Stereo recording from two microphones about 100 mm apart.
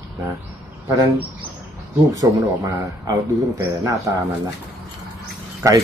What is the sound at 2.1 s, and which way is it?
Speech, 35° right (ahead or behind).